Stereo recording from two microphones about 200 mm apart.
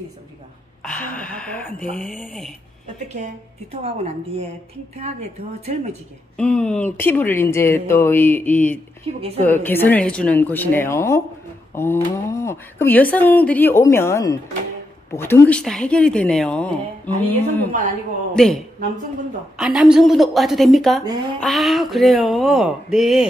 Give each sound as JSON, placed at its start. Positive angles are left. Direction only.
{"t": 0.8, "sound": "a woman's voice", "side_deg": 5}
{"t": 3.8, "sound": "a woman's voice", "side_deg": -30}
{"t": 6.3, "sound": "speech", "side_deg": 5}
{"t": 9.1, "sound": "a woman's voice", "side_deg": -30}
{"t": 9.4, "sound": "a woman's voice", "side_deg": 10}